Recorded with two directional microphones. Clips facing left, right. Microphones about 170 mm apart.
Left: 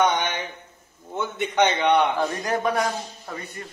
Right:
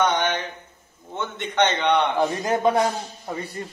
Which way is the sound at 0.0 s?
10° left (ahead or behind).